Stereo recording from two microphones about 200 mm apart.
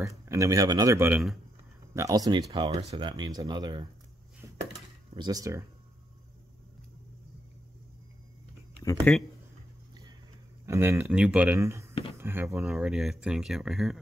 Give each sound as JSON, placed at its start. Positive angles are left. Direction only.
{"t": 0.2, "sound": "speech", "side_deg": -15}
{"t": 5.1, "sound": "speech", "side_deg": -20}
{"t": 9.1, "sound": "speech", "side_deg": 10}
{"t": 10.6, "sound": "speech", "side_deg": -15}
{"t": 11.9, "sound": "a sound", "side_deg": 25}
{"t": 12.2, "sound": "speech", "side_deg": -10}